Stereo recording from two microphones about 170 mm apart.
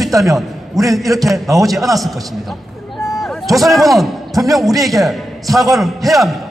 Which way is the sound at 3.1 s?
Centre (ahead or behind).